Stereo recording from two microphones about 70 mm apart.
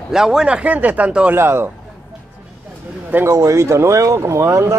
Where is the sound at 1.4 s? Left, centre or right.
Right.